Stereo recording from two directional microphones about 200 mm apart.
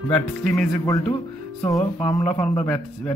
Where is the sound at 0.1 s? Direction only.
5° left (ahead or behind).